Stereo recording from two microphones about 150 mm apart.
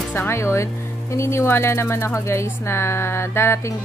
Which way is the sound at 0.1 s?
15° left (ahead or behind).